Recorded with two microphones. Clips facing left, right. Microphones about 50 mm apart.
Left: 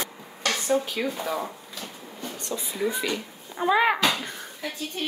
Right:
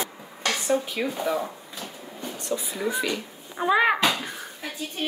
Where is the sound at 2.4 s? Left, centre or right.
Centre.